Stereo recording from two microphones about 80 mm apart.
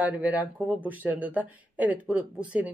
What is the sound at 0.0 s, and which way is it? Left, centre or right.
Speech, centre.